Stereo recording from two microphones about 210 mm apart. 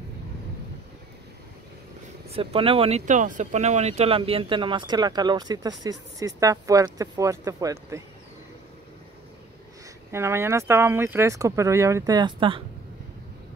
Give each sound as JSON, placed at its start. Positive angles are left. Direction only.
{"t": 2.2, "sound": "speech", "side_deg": -30}
{"t": 10.1, "sound": "speech", "side_deg": -10}